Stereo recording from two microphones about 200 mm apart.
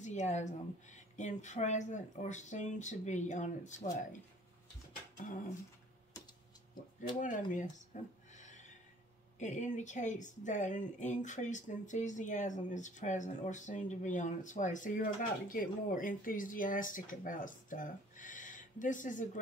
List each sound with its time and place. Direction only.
0.0 s speech: 35° left (ahead or behind)
7.2 s a sound: 40° left (ahead or behind)
9.4 s speech: 35° left (ahead or behind)